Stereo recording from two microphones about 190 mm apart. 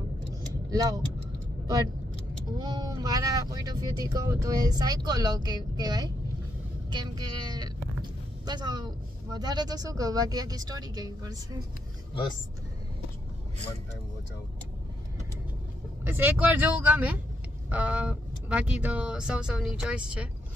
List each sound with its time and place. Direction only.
0.7 s speech: 20° right (ahead or behind)
2.6 s speech: 20° right (ahead or behind)
16.0 s speech: 10° right (ahead or behind)